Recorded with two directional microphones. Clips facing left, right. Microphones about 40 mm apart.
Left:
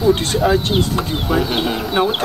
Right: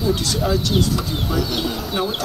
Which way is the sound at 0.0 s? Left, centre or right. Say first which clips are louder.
Left 6 dB; left.